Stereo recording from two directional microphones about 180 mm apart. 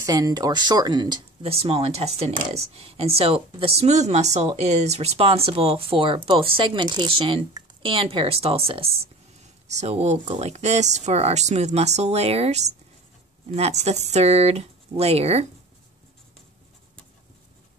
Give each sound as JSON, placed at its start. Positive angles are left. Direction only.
{"t": 0.0, "sound": "speech", "side_deg": -20}